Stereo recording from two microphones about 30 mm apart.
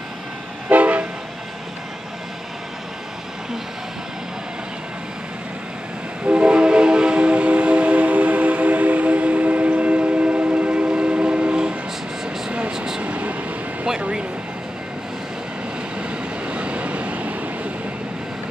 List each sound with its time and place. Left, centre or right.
0.7 s train: right
6.2 s train: right
12.7 s vehicle: centre
13.0 s vehicle: right
16.0 s vehicle: right